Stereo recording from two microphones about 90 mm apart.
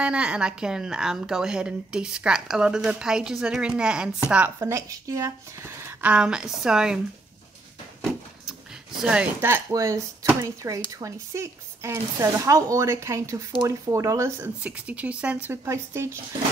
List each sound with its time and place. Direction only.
0.0 s a woman's voice: 10° right (ahead or behind)
4.6 s speech: 35° right (ahead or behind)
6.0 s a woman's voice: 10° right (ahead or behind)
8.0 s a sound: 5° right (ahead or behind)
9.0 s a woman's voice: 10° right (ahead or behind)
9.7 s speech: 35° right (ahead or behind)
14.6 s a woman's voice: 15° right (ahead or behind)
15.5 s speech: 30° right (ahead or behind)